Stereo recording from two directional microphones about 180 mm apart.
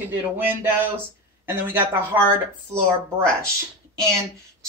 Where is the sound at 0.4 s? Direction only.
10° right (ahead or behind).